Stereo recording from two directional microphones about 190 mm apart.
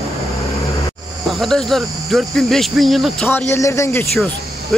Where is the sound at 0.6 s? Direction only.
15° left (ahead or behind).